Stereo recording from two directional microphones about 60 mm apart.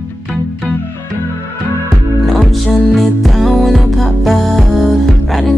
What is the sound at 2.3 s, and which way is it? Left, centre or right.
Music, centre.